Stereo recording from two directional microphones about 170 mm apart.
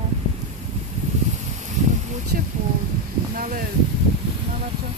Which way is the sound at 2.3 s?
60° right (ahead or behind).